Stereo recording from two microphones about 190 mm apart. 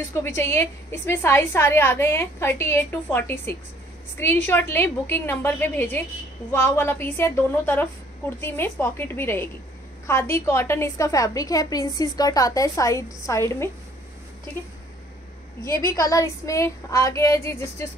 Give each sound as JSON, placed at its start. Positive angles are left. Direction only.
{"t": 0.1, "sound": "a woman's voice", "side_deg": 15}
{"t": 15.6, "sound": "a woman's voice", "side_deg": 15}